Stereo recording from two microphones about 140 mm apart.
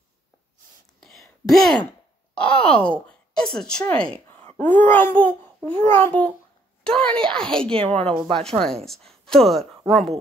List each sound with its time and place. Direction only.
1.0 s a sound: centre (ahead or behind)
2.4 s a child's voice: 10° left (ahead or behind)
8.0 s speech: 40° right (ahead or behind)
8.4 s a child's voice: 5° left (ahead or behind)